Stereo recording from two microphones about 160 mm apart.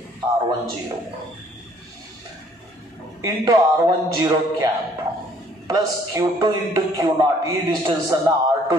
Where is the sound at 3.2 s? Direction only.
25° right (ahead or behind).